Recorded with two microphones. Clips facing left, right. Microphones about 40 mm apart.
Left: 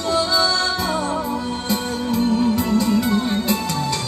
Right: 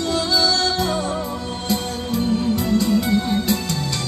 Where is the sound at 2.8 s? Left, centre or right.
Left.